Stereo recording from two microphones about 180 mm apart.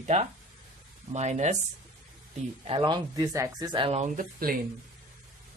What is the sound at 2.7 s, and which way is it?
Speech, 25° right (ahead or behind).